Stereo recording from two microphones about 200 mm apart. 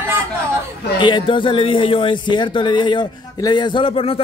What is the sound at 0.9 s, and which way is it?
Speech, 25° left (ahead or behind).